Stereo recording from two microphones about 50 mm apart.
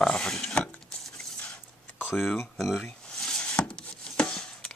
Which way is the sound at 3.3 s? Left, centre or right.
Centre.